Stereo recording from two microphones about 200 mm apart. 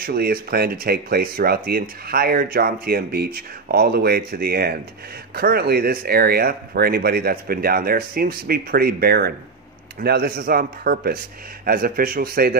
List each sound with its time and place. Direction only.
0.0 s speech: 50° right (ahead or behind)